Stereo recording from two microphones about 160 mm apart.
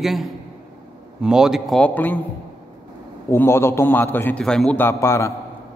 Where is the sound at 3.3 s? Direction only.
15° left (ahead or behind).